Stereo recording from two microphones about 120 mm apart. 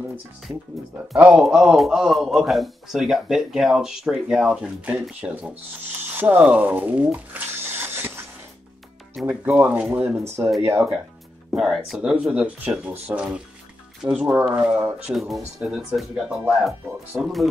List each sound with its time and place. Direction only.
1.1 s speech: 10° right (ahead or behind)
6.0 s a sound: 15° right (ahead or behind)
9.2 s speech: 10° right (ahead or behind)
11.5 s speech: 5° right (ahead or behind)
15.1 s speech: centre (ahead or behind)